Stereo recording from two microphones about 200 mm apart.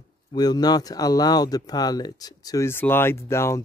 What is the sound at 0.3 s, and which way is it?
Speech, 20° left (ahead or behind).